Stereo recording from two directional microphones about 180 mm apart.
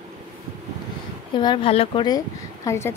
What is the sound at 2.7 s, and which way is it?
Speech, 15° left (ahead or behind).